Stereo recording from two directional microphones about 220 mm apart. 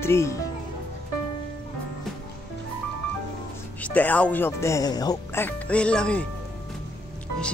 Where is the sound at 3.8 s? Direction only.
5° left (ahead or behind).